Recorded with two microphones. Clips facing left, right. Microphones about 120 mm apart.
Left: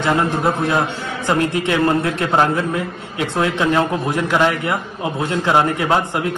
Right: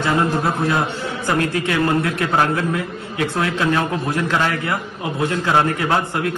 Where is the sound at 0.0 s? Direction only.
20° left (ahead or behind).